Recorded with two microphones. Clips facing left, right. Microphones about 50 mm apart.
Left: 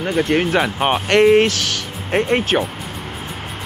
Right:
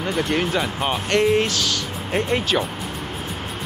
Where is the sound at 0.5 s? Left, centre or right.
Left.